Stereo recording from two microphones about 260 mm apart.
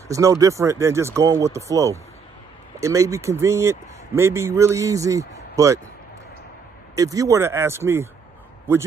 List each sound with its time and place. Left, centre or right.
0.1 s speech: centre
7.0 s speech: centre